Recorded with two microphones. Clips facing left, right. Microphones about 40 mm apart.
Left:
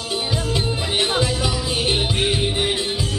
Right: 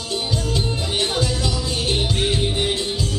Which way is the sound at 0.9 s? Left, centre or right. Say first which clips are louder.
Left 2 dB; left.